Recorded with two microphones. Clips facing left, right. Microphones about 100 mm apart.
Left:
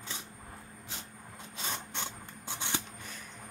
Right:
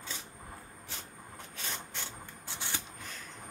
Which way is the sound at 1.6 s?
20° left (ahead or behind).